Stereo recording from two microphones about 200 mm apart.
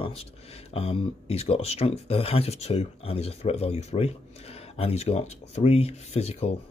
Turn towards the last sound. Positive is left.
turn(degrees=30)  # may be behind; listen again after turning